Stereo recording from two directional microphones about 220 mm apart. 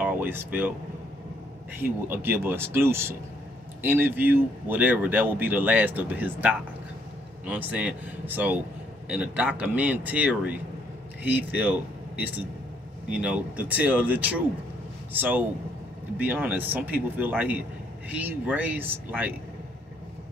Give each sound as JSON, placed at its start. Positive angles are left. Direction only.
{"t": 0.0, "sound": "speech", "side_deg": -10}
{"t": 1.8, "sound": "speech", "side_deg": -10}